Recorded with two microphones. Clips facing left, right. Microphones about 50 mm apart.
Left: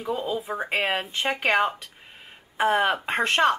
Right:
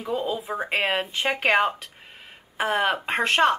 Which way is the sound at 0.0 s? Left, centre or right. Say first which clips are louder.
Right 1 dB; centre.